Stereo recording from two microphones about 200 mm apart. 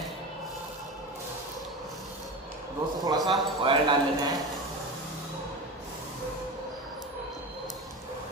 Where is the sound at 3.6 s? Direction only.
25° right (ahead or behind).